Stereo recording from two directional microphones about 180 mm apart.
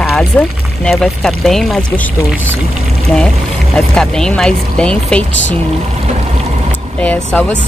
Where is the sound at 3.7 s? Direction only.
5° left (ahead or behind).